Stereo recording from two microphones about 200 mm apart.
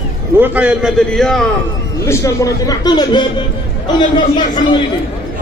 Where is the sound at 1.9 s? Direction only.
15° left (ahead or behind).